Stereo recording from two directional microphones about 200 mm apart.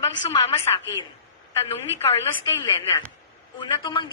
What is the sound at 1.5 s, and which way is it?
A woman's voice, 15° left (ahead or behind).